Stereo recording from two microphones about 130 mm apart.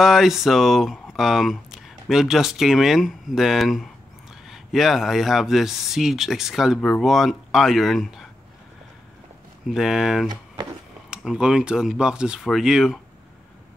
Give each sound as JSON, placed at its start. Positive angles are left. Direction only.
{"t": 0.0, "sound": "speech", "side_deg": -5}
{"t": 9.7, "sound": "speech", "side_deg": -5}
{"t": 10.3, "sound": "a sound", "side_deg": -35}
{"t": 11.1, "sound": "speech", "side_deg": -5}